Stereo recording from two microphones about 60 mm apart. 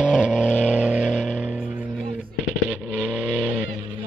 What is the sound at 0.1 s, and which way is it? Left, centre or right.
Vehicle, centre.